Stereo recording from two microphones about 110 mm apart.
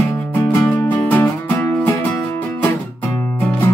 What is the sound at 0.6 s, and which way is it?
Music, 10° left (ahead or behind).